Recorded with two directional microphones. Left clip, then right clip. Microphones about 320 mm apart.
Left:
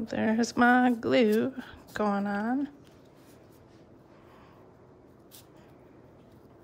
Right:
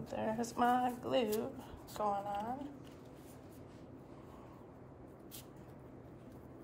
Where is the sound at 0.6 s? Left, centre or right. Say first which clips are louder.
Left 10 dB; left.